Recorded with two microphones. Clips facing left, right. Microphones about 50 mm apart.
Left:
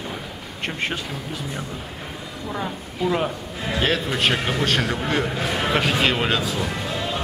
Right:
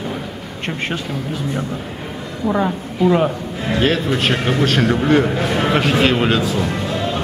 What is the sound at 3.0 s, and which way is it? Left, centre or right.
A man's voice, centre.